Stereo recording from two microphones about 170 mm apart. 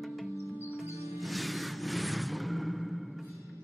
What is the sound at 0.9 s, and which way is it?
Music, 20° right (ahead or behind).